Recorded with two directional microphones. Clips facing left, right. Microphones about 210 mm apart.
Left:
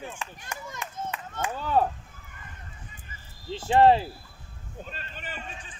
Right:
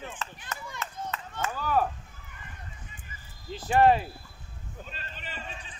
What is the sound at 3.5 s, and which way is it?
Speech, 25° left (ahead or behind).